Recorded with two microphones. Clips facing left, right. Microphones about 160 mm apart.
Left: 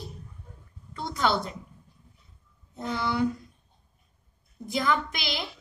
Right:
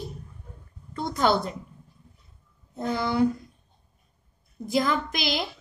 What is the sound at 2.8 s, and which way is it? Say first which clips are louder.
Speech: right 4 dB; 45° right (ahead or behind).